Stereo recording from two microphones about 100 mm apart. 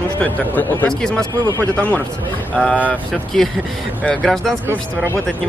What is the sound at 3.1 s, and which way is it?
Speech, 5° left (ahead or behind).